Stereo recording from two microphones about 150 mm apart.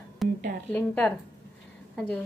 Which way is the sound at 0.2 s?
Centre (ahead or behind).